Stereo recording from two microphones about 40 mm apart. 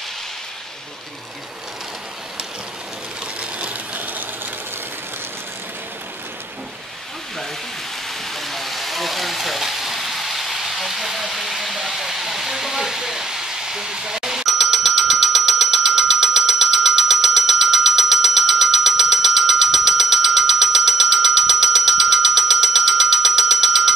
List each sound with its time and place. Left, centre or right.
3.3 s sewing machine: right
8.3 s a sound: centre
14.4 s telephone bell ringing: centre